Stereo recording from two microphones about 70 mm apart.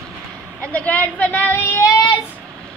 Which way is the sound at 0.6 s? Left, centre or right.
Left.